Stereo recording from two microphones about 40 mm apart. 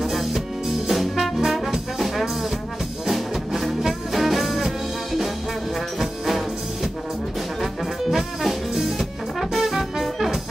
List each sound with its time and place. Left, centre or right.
0.0 s music: centre